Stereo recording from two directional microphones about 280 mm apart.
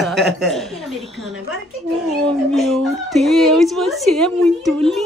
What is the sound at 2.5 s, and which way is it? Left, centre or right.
A woman's voice, centre.